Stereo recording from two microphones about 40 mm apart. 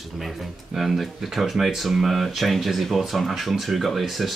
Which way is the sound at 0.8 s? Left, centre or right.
Centre.